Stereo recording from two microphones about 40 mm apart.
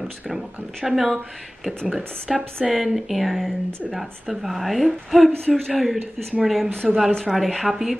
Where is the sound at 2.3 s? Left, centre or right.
Centre.